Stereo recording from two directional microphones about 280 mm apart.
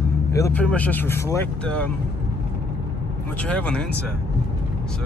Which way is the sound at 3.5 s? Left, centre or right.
Centre.